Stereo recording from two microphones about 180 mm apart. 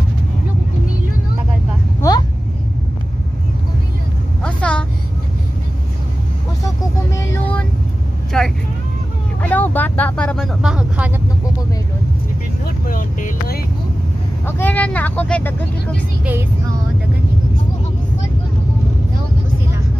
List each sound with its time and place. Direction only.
2.0 s vehicle: 20° left (ahead or behind)
4.4 s vehicle: 5° left (ahead or behind)
7.2 s vehicle: 15° left (ahead or behind)
8.3 s vehicle: 5° left (ahead or behind)
12.8 s vehicle: 50° left (ahead or behind)
14.6 s vehicle: 10° left (ahead or behind)